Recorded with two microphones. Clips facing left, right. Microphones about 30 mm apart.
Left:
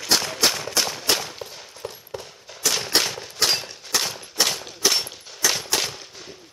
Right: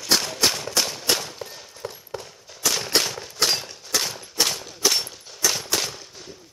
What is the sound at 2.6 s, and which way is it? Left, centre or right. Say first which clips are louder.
Gunshot: even; centre.